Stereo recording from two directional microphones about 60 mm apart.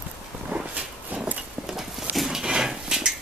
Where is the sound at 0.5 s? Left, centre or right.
Right.